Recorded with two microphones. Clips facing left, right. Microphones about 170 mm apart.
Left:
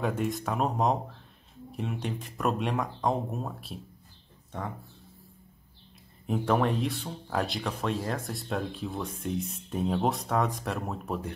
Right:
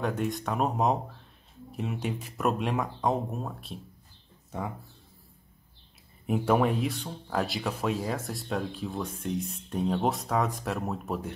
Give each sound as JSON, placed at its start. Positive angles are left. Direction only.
{"t": 0.0, "sound": "speech", "side_deg": 0}
{"t": 6.2, "sound": "speech", "side_deg": -5}